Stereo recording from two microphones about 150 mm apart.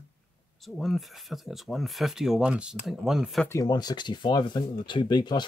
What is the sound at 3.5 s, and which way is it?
Speech, 25° left (ahead or behind).